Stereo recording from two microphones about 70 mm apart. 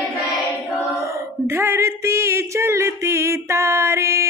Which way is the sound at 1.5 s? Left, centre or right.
Right.